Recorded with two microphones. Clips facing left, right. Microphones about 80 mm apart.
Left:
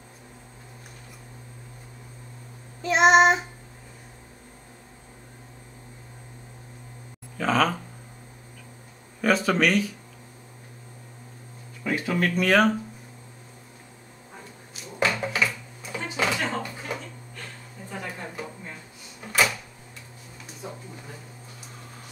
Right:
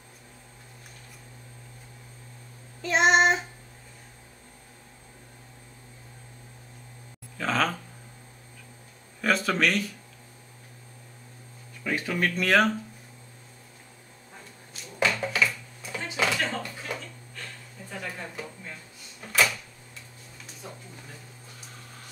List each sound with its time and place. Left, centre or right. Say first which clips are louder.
2.8 s child singing: left 4 dB; centre
7.3 s speech: left 4 dB; centre
9.2 s speech: left 3 dB; centre
11.8 s speech: left 2 dB; centre
15.0 s a sound: left 1 dB; centre
18.4 s drawer open or close: left 2 dB; centre
19.2 s a sound: left 1 dB; centre